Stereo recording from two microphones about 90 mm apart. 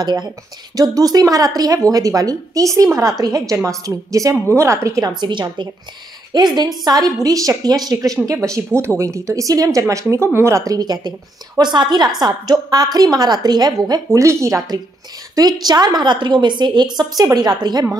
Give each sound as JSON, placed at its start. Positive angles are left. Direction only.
{"t": 0.0, "sound": "a woman's voice", "side_deg": -55}
{"t": 5.1, "sound": "a woman's voice", "side_deg": -55}
{"t": 14.2, "sound": "speech", "side_deg": -35}
{"t": 15.3, "sound": "a woman's voice", "side_deg": -45}